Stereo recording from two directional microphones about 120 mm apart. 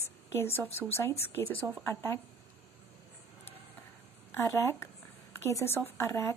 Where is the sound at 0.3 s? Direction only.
20° left (ahead or behind).